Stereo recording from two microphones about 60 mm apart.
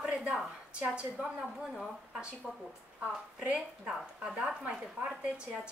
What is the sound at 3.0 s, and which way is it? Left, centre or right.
A woman's voice, centre.